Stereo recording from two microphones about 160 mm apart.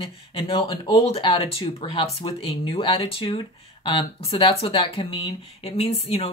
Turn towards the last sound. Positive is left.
turn(degrees=40)  # may be behind; listen again after turning